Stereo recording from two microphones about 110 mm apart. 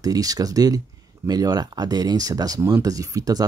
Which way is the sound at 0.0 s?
35° right (ahead or behind).